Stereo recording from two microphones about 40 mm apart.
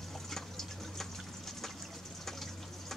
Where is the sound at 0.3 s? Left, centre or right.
Centre.